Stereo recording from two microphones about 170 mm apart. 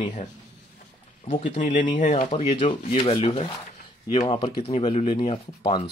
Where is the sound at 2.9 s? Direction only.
30° left (ahead or behind).